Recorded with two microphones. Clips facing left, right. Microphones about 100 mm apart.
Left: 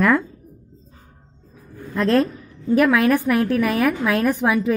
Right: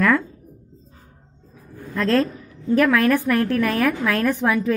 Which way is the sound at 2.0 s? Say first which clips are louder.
Left 2 dB; 15° left (ahead or behind).